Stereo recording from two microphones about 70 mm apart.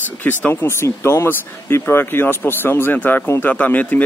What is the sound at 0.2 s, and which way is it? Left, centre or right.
Speech, left.